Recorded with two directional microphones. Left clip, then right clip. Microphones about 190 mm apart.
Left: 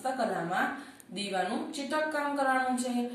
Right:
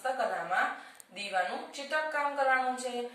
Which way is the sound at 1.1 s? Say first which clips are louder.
Even; 10° right (ahead or behind).